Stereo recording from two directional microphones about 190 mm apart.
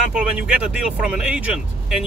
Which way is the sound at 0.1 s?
5° right (ahead or behind).